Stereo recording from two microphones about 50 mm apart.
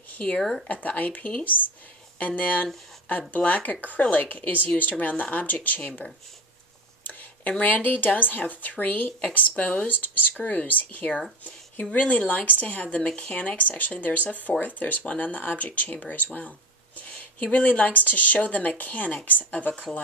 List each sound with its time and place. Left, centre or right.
0.4 s speech: centre
0.7 s speech: left
7.0 s a sound: left
7.6 s speech: left
16.3 s a sound: left
17.4 s speech: left